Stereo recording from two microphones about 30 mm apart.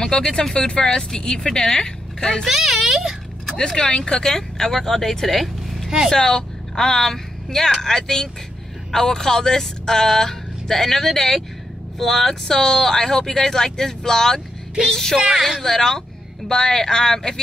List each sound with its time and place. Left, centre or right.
0.0 s speech: left
2.4 s a sound: centre
3.5 s speech: left; by 5.9 s centre
6.1 s a woman's voice: left; by 12.4 s centre
12.4 s speech: centre
15.1 s speech: right
15.6 s speech: centre